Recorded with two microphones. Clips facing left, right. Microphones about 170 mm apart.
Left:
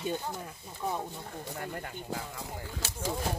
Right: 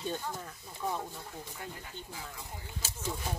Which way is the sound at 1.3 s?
60° left (ahead or behind).